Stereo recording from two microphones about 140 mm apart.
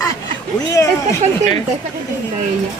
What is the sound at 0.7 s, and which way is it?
Speech, 25° left (ahead or behind).